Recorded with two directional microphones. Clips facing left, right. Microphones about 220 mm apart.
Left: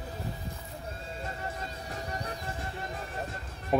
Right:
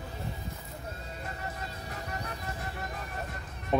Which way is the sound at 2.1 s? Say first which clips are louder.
Left 1 dB; 30° left (ahead or behind).